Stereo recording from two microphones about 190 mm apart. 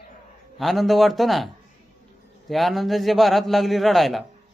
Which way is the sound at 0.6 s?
Centre (ahead or behind).